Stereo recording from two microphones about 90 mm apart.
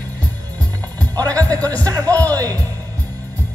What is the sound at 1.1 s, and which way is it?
Speech, 45° right (ahead or behind).